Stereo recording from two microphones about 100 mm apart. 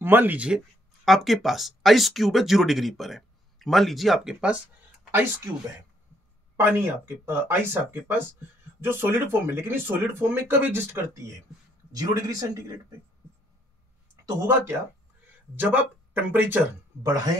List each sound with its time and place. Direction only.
0.0 s speech: 20° right (ahead or behind)
1.0 s speech: centre (ahead or behind)
6.5 s speech: 20° right (ahead or behind)
12.0 s speech: 40° right (ahead or behind)
14.2 s speech: 30° right (ahead or behind)
15.2 s speech: 15° right (ahead or behind)